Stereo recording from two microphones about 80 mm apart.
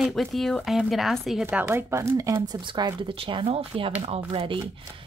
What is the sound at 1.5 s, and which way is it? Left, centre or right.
Speech, right.